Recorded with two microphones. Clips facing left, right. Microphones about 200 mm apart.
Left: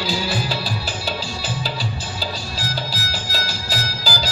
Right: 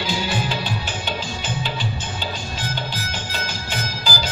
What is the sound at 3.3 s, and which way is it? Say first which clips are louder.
Music: left 2 dB; 35° left (ahead or behind).